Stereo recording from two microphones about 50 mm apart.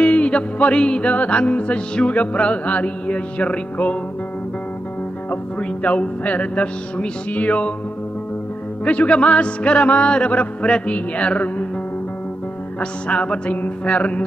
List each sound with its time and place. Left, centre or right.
0.0 s music: left
5.6 s music: left
8.8 s music: left
13.1 s music: left